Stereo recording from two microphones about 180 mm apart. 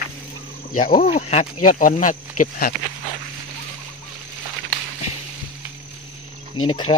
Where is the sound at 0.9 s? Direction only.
35° left (ahead or behind).